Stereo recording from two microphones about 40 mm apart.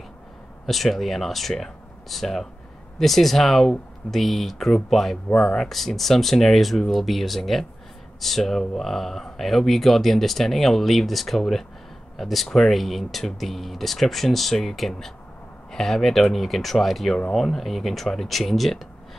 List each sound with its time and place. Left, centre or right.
0.7 s speech: centre
5.7 s speech: centre